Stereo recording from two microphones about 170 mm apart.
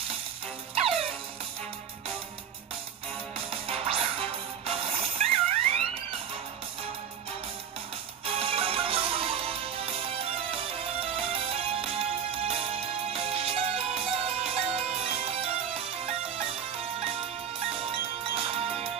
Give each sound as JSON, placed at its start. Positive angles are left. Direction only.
{"t": 0.7, "sound": "music", "side_deg": -35}
{"t": 3.4, "sound": "music", "side_deg": -35}
{"t": 8.4, "sound": "music", "side_deg": -35}